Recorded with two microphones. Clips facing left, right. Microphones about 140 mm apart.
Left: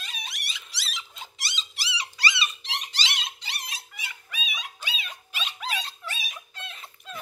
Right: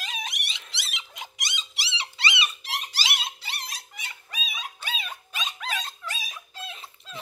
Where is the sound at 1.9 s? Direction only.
25° right (ahead or behind).